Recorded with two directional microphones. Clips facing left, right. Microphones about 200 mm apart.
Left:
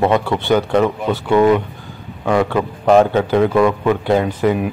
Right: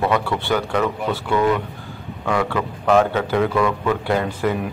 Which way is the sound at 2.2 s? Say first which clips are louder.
Left 5 dB; 25° left (ahead or behind).